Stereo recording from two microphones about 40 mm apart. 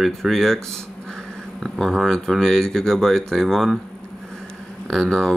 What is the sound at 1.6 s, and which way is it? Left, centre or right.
Speech, centre.